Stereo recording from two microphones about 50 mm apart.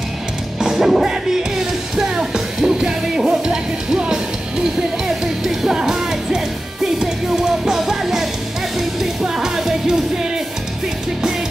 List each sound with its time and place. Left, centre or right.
0.6 s music: centre